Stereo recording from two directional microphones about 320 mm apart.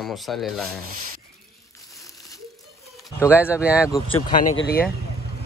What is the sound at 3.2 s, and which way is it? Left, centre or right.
Speech, centre.